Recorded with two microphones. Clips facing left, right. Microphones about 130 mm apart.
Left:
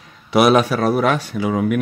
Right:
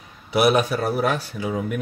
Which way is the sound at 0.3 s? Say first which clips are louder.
Left 5 dB; 90° left.